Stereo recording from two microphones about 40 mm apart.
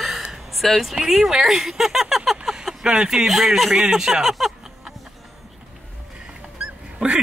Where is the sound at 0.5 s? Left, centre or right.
Centre.